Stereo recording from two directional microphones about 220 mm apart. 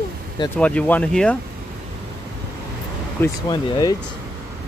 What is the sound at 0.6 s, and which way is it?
Speech, 5° left (ahead or behind).